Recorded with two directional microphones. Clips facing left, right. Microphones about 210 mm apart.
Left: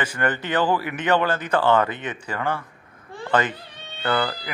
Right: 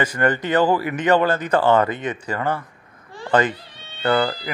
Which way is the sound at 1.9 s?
40° right (ahead or behind).